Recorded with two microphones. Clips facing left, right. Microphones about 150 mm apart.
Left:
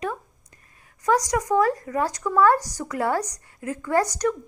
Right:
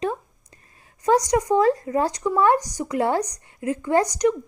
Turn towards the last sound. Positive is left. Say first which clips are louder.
# right 3 dB
turn(degrees=-15)  # may be behind; listen again after turning